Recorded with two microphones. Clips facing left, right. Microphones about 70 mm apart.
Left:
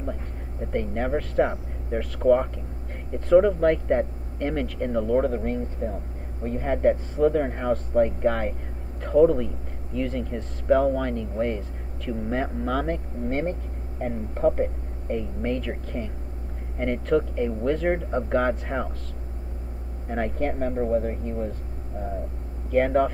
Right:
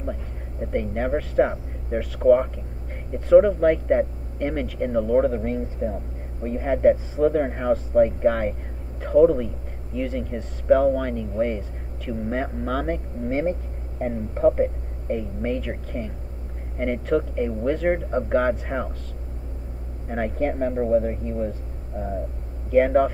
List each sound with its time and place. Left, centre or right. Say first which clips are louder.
0.6 s speech: right 2 dB; centre
20.1 s speech: right 2 dB; centre
22.7 s speech: right 3 dB; centre